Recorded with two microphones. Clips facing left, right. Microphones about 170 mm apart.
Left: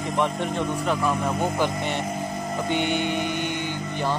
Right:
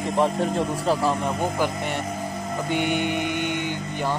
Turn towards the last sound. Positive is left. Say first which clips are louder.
# even
turn(degrees=-15)  # may be behind; listen again after turning